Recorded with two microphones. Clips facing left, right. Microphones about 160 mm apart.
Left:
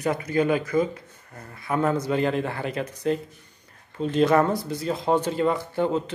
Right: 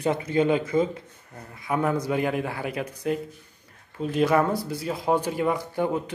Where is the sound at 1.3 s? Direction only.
15° right (ahead or behind).